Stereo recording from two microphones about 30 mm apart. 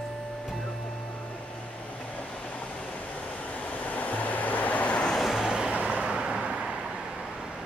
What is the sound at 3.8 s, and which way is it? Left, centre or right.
Vehicle, left.